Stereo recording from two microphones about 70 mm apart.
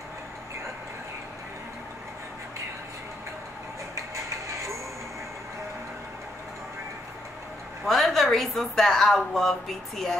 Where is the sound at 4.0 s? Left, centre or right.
Right.